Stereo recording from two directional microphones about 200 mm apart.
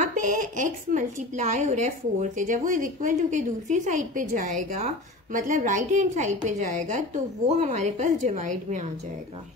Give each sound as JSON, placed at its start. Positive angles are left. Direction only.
{"t": 0.0, "sound": "a woman's voice", "side_deg": -40}